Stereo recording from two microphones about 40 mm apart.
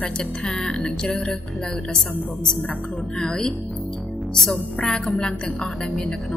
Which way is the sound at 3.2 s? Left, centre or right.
Centre.